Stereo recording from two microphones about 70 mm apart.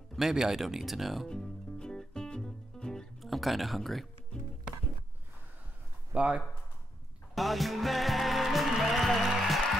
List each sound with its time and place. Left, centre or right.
0.1 s speech: centre
1.2 s music: centre
6.1 s speech: centre
7.3 s music: centre